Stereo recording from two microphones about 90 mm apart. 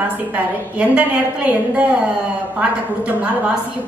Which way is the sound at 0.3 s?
15° right (ahead or behind).